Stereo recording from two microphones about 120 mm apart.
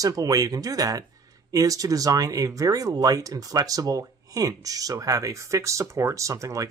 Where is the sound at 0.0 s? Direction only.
30° right (ahead or behind).